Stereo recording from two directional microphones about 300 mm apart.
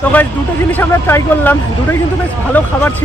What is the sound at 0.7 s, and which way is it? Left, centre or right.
Speech, centre.